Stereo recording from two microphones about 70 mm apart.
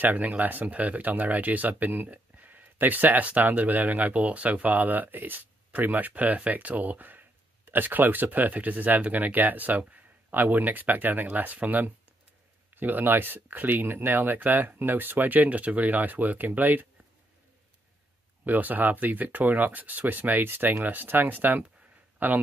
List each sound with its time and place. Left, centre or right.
0.0 s speech: right
18.4 s speech: right